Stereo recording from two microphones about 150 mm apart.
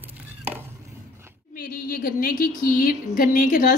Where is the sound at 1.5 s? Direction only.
90° left.